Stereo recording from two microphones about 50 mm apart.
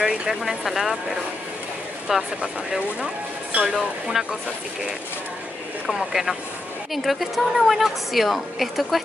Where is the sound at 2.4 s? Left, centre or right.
Right.